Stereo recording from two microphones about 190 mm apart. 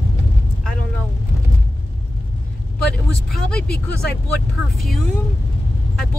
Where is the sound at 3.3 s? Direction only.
5° left (ahead or behind).